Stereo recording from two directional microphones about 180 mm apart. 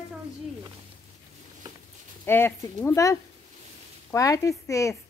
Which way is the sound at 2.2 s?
10° left (ahead or behind).